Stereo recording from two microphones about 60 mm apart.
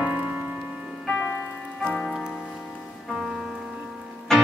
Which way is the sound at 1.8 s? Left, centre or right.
Centre.